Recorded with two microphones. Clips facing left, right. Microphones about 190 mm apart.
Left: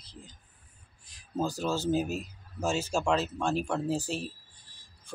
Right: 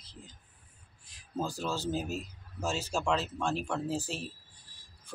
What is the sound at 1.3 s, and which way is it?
Speech, centre (ahead or behind).